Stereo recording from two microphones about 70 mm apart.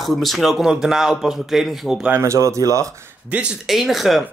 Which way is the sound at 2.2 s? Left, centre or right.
Right.